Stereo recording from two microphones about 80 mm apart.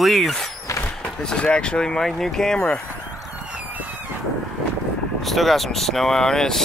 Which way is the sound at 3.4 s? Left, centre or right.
Centre.